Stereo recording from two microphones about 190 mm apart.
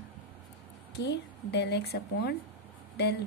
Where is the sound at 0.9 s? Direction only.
65° left (ahead or behind).